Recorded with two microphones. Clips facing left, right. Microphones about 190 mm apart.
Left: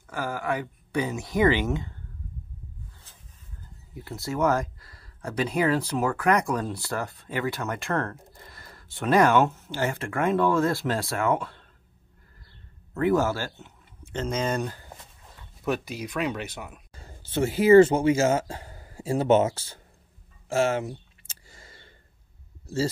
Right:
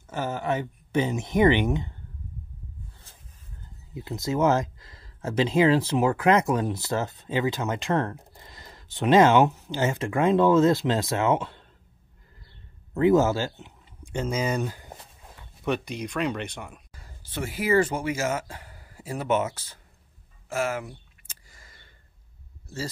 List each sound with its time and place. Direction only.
0.0 s speech: 25° right (ahead or behind)
3.9 s speech: 20° right (ahead or behind)
12.9 s speech: 20° right (ahead or behind); by 16.8 s 5° left (ahead or behind)
16.9 s speech: 25° left (ahead or behind)
20.4 s a sound: 25° left (ahead or behind)